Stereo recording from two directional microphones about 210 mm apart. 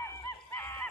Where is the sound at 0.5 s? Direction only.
10° left (ahead or behind).